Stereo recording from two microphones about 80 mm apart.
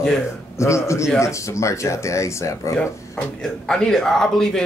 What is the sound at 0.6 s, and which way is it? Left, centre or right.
Speech, left.